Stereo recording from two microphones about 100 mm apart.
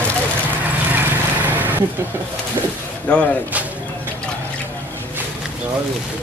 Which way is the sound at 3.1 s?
15° left (ahead or behind).